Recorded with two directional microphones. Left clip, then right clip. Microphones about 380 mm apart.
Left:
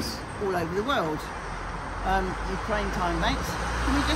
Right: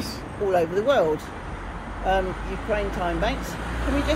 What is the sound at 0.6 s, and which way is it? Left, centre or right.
Speech, centre.